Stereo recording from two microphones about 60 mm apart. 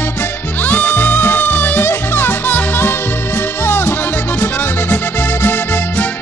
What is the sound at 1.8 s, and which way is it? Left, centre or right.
Music, left.